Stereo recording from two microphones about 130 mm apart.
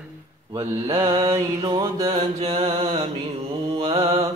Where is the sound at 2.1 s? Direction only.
50° right (ahead or behind).